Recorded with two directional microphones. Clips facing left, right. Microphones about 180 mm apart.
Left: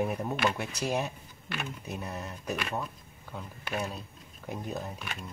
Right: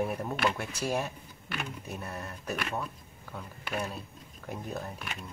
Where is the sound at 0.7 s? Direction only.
15° left (ahead or behind).